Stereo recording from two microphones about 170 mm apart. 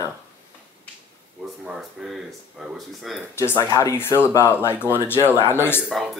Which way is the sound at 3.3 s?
20° left (ahead or behind).